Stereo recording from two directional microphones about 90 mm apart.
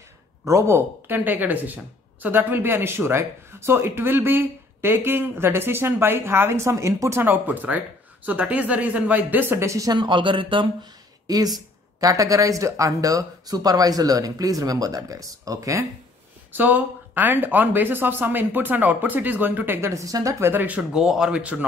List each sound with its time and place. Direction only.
0.5 s speech: 30° right (ahead or behind)
9.9 s speech: 65° right (ahead or behind)
11.2 s speech: 45° right (ahead or behind)
16.5 s speech: 20° right (ahead or behind)
19.9 s speech: 40° right (ahead or behind); by 21.6 s 15° right (ahead or behind)